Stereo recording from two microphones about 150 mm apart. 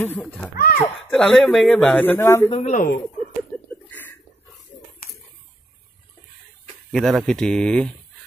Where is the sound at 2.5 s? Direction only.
50° left (ahead or behind).